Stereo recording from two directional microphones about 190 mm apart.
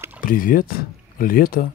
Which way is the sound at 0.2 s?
45° left (ahead or behind).